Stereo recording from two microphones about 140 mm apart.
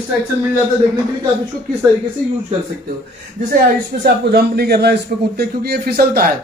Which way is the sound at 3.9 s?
90° right.